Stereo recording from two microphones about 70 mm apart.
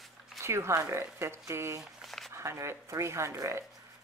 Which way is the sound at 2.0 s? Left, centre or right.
Centre.